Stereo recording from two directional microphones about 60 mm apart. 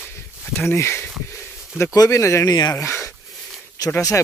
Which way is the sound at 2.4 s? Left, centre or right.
Left.